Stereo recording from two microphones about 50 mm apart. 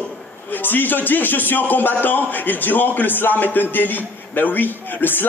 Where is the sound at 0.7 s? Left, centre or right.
Left.